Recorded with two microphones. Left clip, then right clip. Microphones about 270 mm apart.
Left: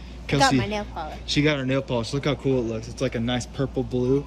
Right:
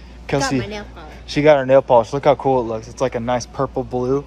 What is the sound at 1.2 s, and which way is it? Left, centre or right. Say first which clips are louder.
A woman's voice: right 11 dB; centre.